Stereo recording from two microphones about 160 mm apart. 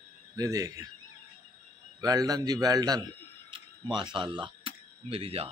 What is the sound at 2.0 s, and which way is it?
Speech, 25° right (ahead or behind).